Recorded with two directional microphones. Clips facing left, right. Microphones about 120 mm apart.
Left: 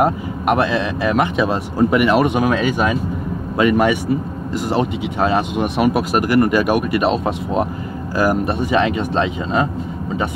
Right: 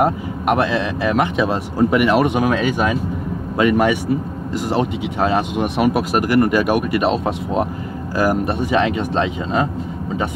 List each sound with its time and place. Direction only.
0.0 s speech: 15° left (ahead or behind)